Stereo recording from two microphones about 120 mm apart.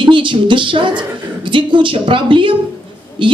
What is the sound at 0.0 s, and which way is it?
Speech, 45° right (ahead or behind).